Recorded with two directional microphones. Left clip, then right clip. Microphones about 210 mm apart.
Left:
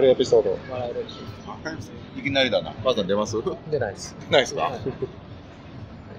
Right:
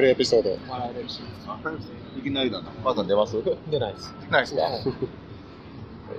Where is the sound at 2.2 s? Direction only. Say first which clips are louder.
Left 6 dB; 35° left (ahead or behind).